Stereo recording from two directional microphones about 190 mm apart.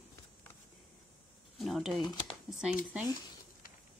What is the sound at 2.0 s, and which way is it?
Speech, 25° left (ahead or behind).